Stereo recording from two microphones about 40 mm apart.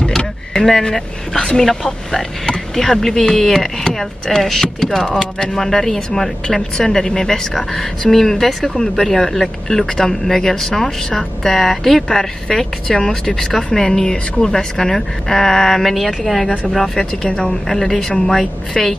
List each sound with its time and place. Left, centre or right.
0.5 s speech: centre